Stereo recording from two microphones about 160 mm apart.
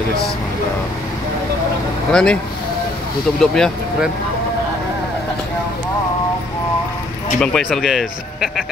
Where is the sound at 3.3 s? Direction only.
5° left (ahead or behind).